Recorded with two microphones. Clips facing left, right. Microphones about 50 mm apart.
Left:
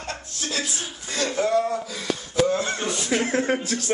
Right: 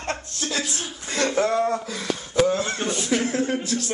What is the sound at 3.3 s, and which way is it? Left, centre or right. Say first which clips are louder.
Speech: left 1 dB; left.